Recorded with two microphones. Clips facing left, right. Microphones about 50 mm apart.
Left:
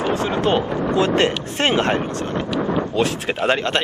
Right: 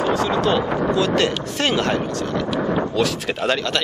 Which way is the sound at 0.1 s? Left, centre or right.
Left.